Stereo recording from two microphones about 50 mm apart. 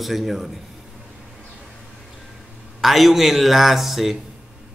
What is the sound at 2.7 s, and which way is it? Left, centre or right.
A man's voice, centre.